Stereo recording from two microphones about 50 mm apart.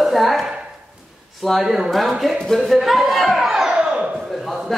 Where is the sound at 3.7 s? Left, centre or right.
Right.